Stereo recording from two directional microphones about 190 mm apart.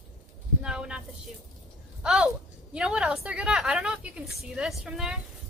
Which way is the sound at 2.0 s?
5° right (ahead or behind).